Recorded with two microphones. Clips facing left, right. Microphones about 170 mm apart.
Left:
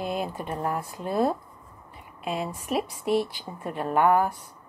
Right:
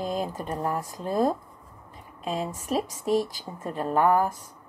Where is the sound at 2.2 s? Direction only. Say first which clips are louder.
Even; 35° right (ahead or behind).